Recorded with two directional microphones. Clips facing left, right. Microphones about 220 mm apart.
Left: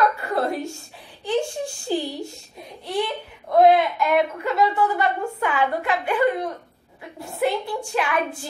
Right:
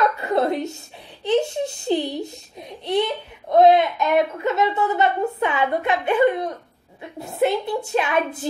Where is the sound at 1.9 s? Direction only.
20° right (ahead or behind).